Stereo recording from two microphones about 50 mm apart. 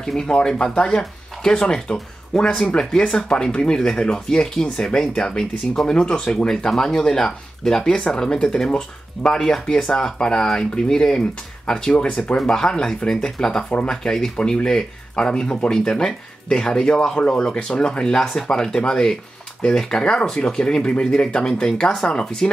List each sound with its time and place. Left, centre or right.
0.0 s speech: centre